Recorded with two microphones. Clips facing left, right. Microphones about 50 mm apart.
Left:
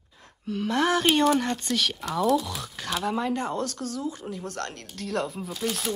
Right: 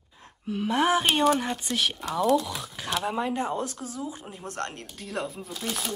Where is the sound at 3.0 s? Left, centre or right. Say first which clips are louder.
Left 2 dB; centre.